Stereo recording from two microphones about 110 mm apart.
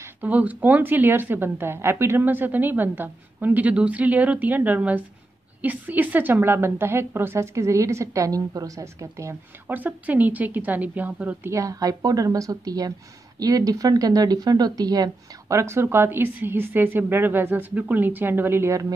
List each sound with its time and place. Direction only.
0.0 s a woman's voice: 15° right (ahead or behind)
11.5 s a woman's voice: 30° right (ahead or behind)